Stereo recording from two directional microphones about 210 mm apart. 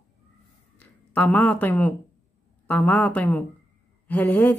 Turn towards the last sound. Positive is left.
turn(degrees=10)  # may be behind; listen again after turning